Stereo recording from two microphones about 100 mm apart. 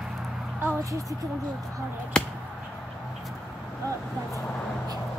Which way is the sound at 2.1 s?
5° left (ahead or behind).